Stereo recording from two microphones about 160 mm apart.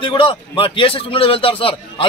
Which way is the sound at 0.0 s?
30° left (ahead or behind).